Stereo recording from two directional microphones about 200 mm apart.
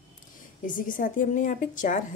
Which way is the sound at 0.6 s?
40° left (ahead or behind).